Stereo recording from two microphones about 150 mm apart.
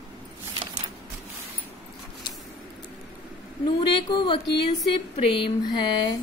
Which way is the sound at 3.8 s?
35° left (ahead or behind).